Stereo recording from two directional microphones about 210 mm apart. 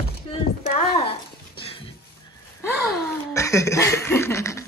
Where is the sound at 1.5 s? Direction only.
25° left (ahead or behind).